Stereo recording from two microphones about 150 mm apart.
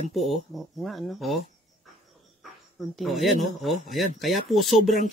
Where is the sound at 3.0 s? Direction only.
Centre (ahead or behind).